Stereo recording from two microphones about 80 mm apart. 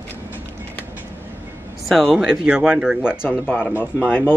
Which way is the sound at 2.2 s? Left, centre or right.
Centre.